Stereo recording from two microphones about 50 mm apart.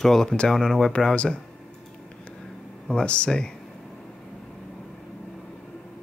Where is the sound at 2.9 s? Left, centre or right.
Centre.